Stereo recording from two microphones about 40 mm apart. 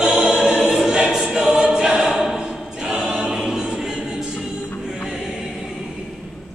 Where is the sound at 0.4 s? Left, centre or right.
Centre.